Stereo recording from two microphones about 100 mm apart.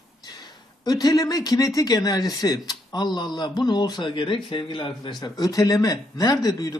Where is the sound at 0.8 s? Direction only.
40° left (ahead or behind).